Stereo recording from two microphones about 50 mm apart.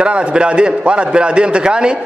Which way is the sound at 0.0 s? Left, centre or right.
Right.